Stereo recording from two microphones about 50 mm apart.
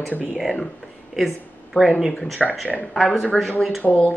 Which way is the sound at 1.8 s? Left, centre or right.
Left.